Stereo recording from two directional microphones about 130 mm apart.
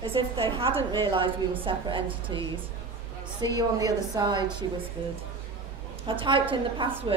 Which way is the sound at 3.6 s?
30° right (ahead or behind).